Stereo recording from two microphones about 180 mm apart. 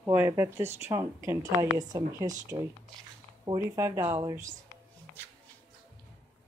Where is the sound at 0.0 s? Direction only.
15° right (ahead or behind).